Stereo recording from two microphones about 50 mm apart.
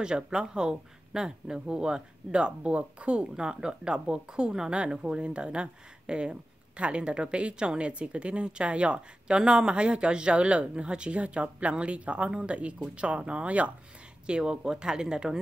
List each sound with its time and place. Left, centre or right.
0.0 s speech: centre